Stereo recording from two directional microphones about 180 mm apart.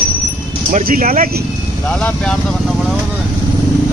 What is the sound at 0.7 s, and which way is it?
Speech, 45° right (ahead or behind).